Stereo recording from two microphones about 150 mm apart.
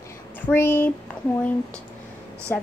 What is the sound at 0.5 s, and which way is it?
Speech, 10° left (ahead or behind).